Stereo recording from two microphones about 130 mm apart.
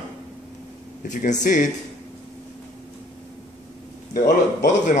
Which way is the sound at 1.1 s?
85° left.